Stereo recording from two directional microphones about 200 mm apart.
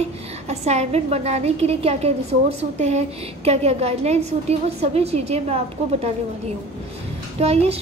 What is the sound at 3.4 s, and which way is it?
A woman's voice, 30° right (ahead or behind).